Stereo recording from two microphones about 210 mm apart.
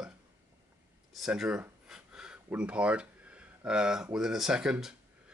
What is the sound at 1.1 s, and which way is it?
Speech, centre (ahead or behind).